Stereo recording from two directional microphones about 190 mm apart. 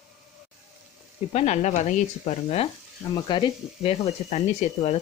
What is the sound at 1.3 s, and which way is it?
Speech, 35° left (ahead or behind).